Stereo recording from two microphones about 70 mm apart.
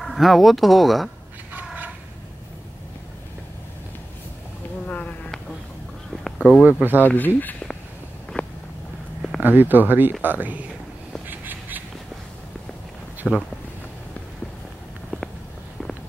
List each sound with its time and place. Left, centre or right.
0.0 s speech: centre
6.6 s speech: right
7.0 s speech: left
8.3 s vehicle: centre
9.4 s speech: right
11.2 s a sound: right
13.2 s speech: centre